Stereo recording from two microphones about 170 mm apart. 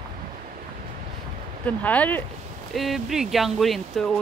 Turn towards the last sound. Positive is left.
turn(degrees=0)  # may be behind; listen again after turning